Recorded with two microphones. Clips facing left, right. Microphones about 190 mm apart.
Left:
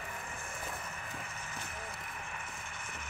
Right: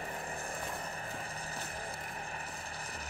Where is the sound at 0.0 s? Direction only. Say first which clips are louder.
Right 4 dB; 35° right (ahead or behind).